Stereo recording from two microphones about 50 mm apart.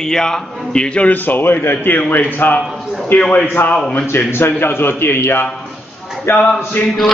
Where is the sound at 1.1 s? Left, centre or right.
Left.